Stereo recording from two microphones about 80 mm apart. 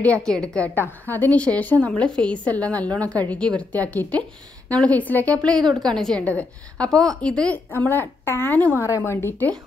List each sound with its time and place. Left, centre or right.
0.0 s a woman's voice: centre
0.7 s a woman's voice: left
7.7 s a woman's voice: left
8.8 s speech: left